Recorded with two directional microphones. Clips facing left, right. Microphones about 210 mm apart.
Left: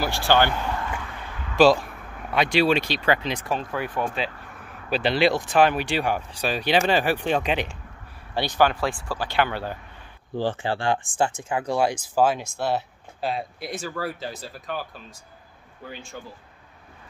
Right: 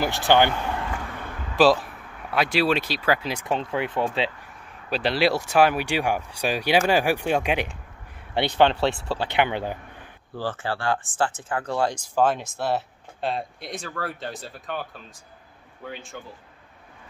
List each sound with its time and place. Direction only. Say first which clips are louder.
0.0 s speech: right 1 dB; 20° right (ahead or behind)
1.6 s speech: left 1 dB; centre (ahead or behind)
3.4 s speech: right 5 dB; 25° right (ahead or behind)
4.8 s speech: left 1 dB; centre (ahead or behind)
8.5 s speech: right 2 dB; 25° right (ahead or behind)
10.3 s speech: left 3 dB; 15° left (ahead or behind)
15.9 s speech: right 1 dB; centre (ahead or behind)